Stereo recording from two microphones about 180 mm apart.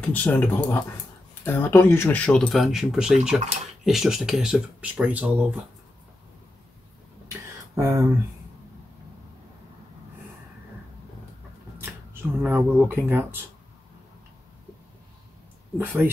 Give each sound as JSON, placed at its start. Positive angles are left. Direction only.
{"t": 0.0, "sound": "speech", "side_deg": 10}
{"t": 7.7, "sound": "speech", "side_deg": -15}
{"t": 11.8, "sound": "speech", "side_deg": -10}
{"t": 15.8, "sound": "speech", "side_deg": -10}